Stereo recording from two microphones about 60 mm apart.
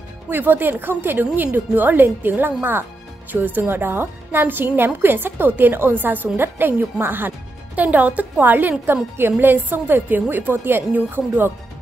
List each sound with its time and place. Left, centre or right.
0.3 s a woman's voice: right